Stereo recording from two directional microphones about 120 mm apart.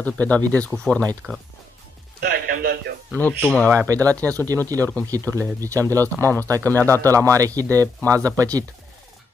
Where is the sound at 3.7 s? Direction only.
30° right (ahead or behind).